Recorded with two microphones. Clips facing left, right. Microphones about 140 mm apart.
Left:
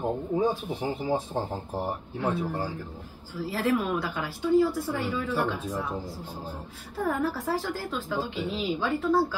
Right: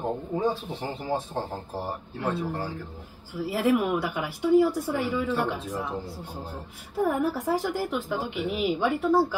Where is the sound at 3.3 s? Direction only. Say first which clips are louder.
Right 3 dB; 15° right (ahead or behind).